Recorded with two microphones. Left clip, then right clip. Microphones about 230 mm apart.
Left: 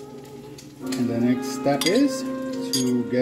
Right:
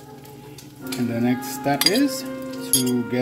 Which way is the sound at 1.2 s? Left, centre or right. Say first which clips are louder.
Even; centre.